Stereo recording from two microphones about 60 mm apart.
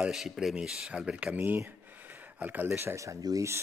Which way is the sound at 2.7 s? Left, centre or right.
Right.